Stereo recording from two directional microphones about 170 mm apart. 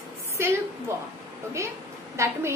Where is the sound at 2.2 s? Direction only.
15° right (ahead or behind).